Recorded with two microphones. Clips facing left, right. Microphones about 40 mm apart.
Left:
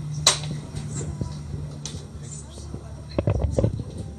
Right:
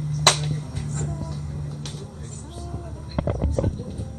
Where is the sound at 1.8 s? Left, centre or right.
Centre.